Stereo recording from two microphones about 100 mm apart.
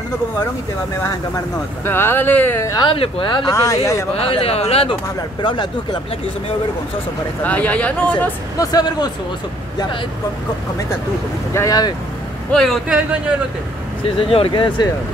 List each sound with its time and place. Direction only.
1.9 s speech: 20° left (ahead or behind)
2.8 s speech: 65° left (ahead or behind)
3.4 s speech: 35° left (ahead or behind)
4.2 s speech: 70° left (ahead or behind); by 4.9 s 90° left
5.4 s speech: 50° left (ahead or behind)
7.4 s speech: 15° left (ahead or behind)
8.5 s speech: 40° left (ahead or behind)
11.5 s speech: 35° left (ahead or behind)
12.5 s speech: centre (ahead or behind)
12.8 s a man's voice: 15° right (ahead or behind)
14.1 s speech: 70° left (ahead or behind)